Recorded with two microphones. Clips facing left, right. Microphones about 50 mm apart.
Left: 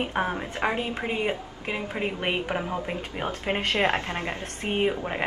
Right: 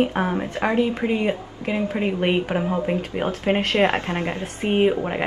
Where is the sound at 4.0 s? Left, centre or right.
Right.